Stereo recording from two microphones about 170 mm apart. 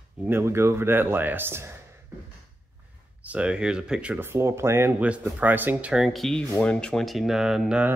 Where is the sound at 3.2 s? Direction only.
5° right (ahead or behind).